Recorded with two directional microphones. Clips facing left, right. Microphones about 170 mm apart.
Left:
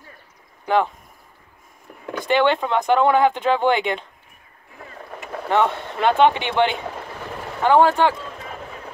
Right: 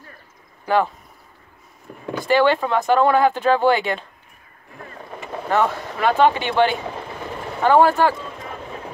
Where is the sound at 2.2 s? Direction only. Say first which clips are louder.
Right 1 dB; 20° left (ahead or behind).